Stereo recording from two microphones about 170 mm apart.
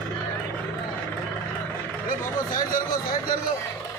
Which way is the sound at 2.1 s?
55° left (ahead or behind).